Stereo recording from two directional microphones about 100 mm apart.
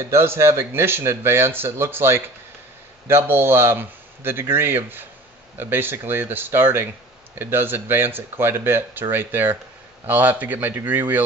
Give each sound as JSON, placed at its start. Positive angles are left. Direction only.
{"t": 0.0, "sound": "speech", "side_deg": -25}